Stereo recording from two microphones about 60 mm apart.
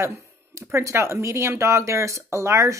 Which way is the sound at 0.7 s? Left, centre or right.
Right.